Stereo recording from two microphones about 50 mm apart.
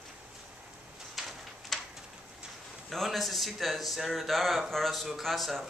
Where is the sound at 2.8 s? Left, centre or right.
Centre.